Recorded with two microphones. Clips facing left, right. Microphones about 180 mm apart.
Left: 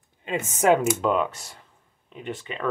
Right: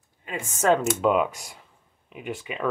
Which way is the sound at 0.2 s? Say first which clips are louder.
Left 3 dB; 20° left (ahead or behind).